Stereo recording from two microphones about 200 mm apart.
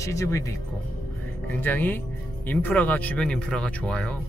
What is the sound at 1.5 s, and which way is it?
Speech, 10° left (ahead or behind).